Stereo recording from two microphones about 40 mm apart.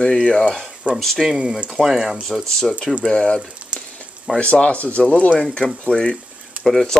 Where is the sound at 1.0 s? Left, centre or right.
Centre.